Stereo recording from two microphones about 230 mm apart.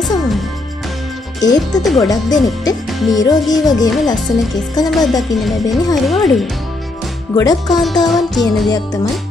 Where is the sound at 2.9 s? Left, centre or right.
Centre.